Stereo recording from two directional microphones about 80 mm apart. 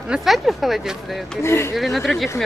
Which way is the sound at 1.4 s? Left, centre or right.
Left.